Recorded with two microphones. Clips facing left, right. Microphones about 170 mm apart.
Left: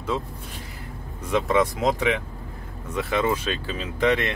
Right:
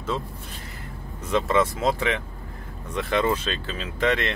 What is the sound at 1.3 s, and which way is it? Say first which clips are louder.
Speech: left 1 dB; 15° left (ahead or behind).